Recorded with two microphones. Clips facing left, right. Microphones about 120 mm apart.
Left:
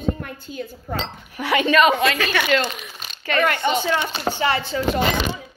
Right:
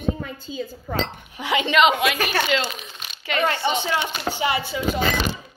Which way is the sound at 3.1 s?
15° right (ahead or behind).